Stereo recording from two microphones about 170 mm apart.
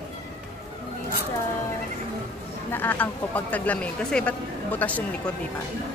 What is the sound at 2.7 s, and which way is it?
Speech, 10° left (ahead or behind).